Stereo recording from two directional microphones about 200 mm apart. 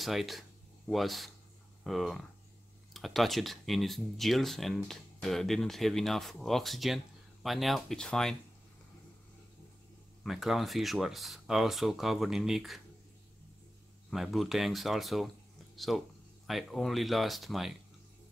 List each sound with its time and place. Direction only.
0.0 s speech: centre (ahead or behind)
10.2 s speech: centre (ahead or behind)
14.1 s speech: centre (ahead or behind)